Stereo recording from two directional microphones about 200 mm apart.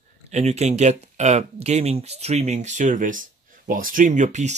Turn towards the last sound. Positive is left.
turn(degrees=-35)  # may be behind; listen again after turning